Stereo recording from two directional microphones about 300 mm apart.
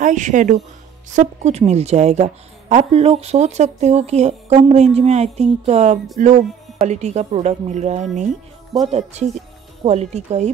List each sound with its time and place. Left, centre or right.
0.0 s a woman's voice: right